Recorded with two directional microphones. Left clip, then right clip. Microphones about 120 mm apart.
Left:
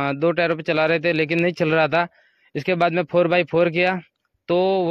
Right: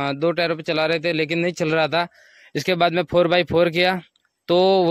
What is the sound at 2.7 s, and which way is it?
Speech, 30° right (ahead or behind).